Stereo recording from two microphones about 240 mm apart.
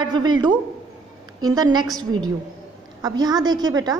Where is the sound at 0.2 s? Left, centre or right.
Centre.